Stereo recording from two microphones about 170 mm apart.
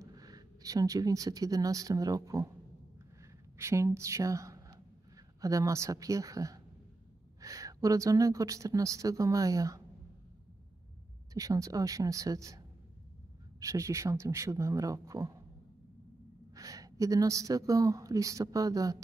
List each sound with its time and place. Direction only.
0.0 s speech: 20° right (ahead or behind)
3.5 s a woman's voice: 15° right (ahead or behind)
11.3 s a woman's voice: 20° right (ahead or behind)
16.5 s a woman's voice: 20° right (ahead or behind)